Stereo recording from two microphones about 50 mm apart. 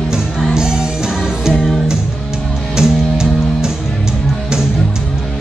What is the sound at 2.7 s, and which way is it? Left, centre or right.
Music, centre.